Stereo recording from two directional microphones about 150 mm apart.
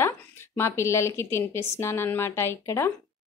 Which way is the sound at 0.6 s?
15° left (ahead or behind).